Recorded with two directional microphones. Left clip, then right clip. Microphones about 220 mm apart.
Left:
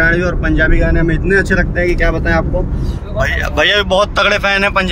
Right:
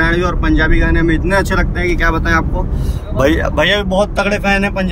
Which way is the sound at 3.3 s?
15° right (ahead or behind).